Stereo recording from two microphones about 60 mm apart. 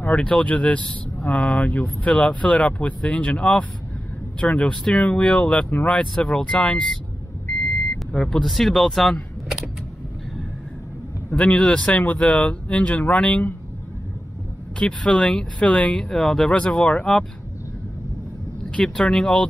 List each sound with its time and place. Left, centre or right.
0.0 s speech: left
8.1 s speech: centre
11.2 s speech: centre
14.8 s speech: centre
16.0 s speech: centre
18.7 s speech: centre